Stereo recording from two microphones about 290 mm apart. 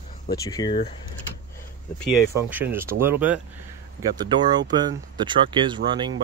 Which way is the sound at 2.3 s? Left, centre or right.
Centre.